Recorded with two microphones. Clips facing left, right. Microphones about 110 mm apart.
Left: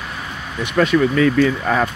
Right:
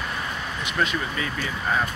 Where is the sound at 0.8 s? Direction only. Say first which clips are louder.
Left 12 dB; 90° left.